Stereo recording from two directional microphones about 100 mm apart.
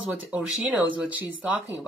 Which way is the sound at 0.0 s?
10° right (ahead or behind).